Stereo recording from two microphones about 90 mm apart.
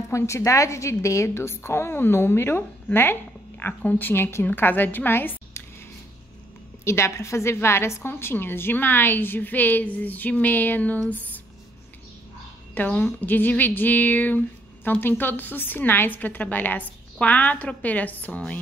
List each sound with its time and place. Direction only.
0.1 s a woman's voice: 35° left (ahead or behind)
6.8 s a woman's voice: 30° left (ahead or behind)
12.7 s a woman's voice: 15° left (ahead or behind)